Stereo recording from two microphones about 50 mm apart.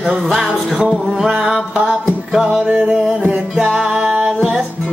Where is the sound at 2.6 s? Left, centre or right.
Centre.